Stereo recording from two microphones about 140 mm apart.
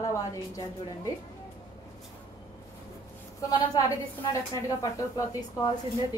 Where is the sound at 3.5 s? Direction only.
25° left (ahead or behind).